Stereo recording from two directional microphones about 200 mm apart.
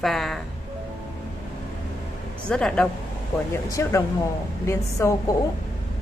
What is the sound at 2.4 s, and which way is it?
Speech, 5° left (ahead or behind).